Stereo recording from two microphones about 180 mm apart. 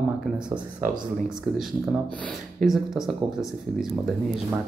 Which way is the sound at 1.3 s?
Centre (ahead or behind).